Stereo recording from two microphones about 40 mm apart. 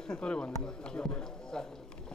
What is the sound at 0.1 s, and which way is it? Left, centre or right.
Speech, left.